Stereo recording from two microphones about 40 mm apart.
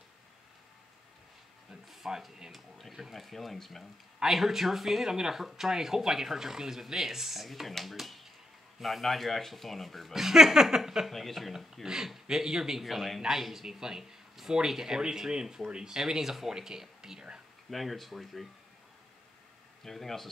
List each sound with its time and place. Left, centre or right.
2.0 s speech: centre
2.9 s speech: centre
4.2 s speech: centre
10.1 s speech: centre
11.1 s speech: centre
11.8 s speech: centre
12.8 s speech: centre
17.6 s speech: centre
19.8 s speech: centre